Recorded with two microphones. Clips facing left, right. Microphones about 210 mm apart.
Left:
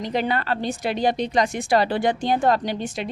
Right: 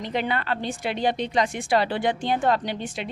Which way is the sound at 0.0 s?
40° left (ahead or behind).